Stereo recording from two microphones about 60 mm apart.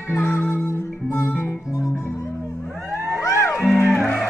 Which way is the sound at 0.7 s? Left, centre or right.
Left.